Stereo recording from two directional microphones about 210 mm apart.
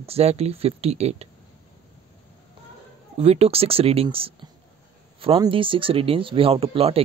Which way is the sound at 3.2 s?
30° right (ahead or behind).